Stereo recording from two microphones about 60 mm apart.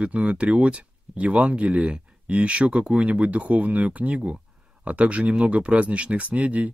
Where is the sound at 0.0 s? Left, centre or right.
Centre.